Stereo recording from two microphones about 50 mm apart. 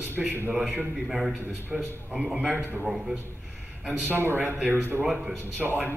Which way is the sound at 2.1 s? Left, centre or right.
Right.